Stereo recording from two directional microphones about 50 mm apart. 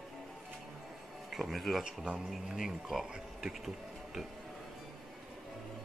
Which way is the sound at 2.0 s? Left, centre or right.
Centre.